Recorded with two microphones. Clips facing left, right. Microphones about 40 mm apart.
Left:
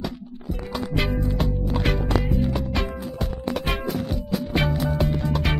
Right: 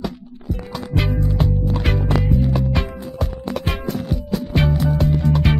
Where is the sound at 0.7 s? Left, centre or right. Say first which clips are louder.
Right 2 dB; centre.